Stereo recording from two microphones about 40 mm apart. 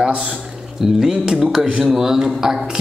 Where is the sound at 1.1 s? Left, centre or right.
Centre.